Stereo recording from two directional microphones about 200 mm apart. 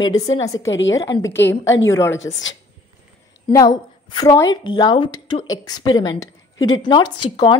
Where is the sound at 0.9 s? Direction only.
15° left (ahead or behind).